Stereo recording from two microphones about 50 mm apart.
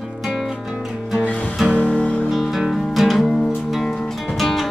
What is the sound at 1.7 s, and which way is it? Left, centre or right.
Music, left.